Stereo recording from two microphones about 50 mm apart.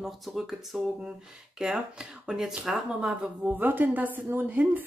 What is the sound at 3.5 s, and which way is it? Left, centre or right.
Speech, right.